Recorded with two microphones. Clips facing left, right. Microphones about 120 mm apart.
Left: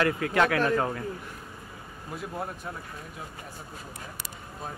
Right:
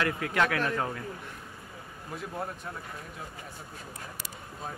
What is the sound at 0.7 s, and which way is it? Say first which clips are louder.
Speech: left 5 dB; 55° left (ahead or behind).